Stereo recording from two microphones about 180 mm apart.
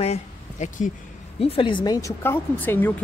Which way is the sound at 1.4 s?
30° left (ahead or behind).